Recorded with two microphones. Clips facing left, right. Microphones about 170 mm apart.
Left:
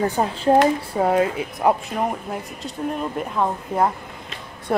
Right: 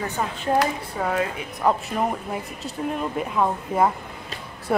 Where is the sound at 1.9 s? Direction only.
Centre (ahead or behind).